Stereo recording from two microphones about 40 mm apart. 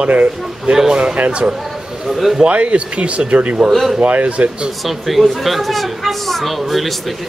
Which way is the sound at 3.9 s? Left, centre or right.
Right.